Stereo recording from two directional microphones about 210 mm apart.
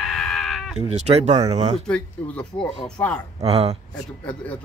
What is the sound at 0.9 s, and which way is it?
Speech, 30° right (ahead or behind).